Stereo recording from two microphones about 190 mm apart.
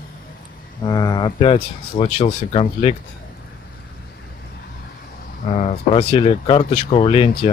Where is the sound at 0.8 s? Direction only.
20° left (ahead or behind).